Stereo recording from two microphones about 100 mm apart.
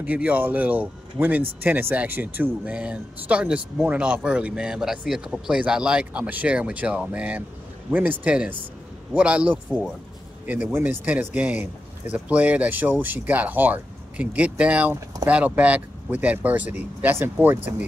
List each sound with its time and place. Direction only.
0.0 s speech: 15° right (ahead or behind)